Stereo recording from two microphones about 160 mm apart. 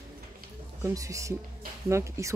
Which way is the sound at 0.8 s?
20° right (ahead or behind).